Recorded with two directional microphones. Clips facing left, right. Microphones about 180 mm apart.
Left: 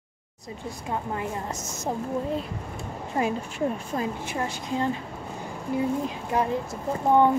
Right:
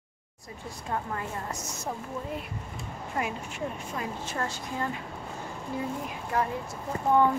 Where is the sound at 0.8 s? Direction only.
20° left (ahead or behind).